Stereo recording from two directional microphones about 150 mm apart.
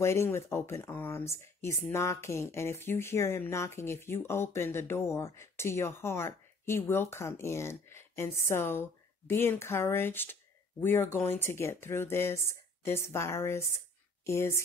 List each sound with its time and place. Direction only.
0.0 s speech: 20° left (ahead or behind)